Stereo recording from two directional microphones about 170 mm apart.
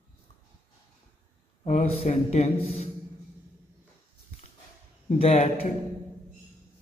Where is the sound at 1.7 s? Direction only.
40° left (ahead or behind).